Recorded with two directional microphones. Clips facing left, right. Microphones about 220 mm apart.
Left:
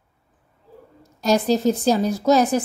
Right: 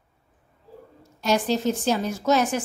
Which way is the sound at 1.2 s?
40° left (ahead or behind).